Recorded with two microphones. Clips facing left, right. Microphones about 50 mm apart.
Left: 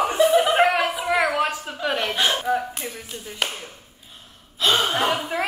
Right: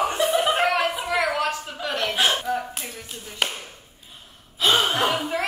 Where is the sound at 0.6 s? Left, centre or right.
Centre.